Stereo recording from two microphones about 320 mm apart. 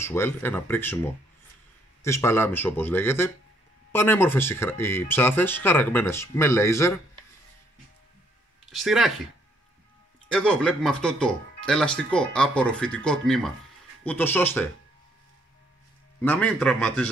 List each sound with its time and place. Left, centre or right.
0.0 s speech: centre
8.6 s speech: centre
10.2 s speech: centre
16.2 s speech: centre